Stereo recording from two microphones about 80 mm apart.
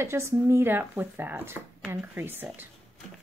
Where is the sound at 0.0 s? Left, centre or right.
Right.